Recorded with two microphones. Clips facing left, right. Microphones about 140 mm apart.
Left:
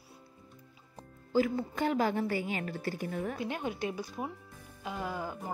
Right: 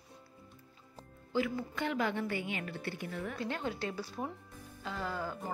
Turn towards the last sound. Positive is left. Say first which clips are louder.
# left 1 dB
turn(degrees=15)  # may be behind; listen again after turning